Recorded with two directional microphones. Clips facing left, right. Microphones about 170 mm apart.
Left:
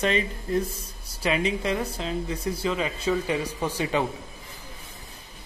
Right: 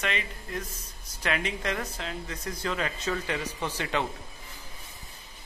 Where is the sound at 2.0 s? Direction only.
30° left (ahead or behind).